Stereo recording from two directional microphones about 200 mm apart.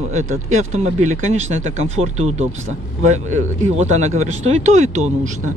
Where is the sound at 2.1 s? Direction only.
35° right (ahead or behind).